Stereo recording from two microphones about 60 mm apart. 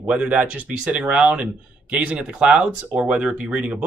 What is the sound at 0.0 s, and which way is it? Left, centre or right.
Speech, right.